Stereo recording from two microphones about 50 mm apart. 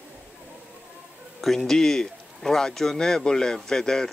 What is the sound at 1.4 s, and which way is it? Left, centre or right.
Speech, centre.